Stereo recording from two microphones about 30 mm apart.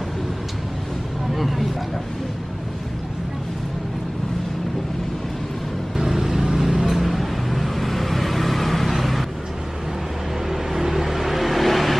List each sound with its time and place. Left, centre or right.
1.3 s speech: centre
5.9 s vehicle: centre
10.5 s vehicle: centre